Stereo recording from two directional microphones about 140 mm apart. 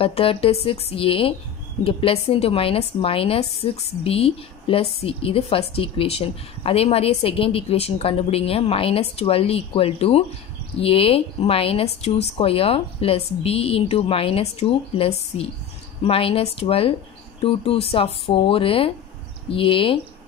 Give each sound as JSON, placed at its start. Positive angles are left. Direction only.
{"t": 0.0, "sound": "a woman's voice", "side_deg": 40}